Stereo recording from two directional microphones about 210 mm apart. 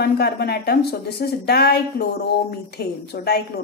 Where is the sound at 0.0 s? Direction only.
50° left (ahead or behind).